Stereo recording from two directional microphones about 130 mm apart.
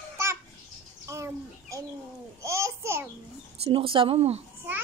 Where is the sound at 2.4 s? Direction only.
25° right (ahead or behind).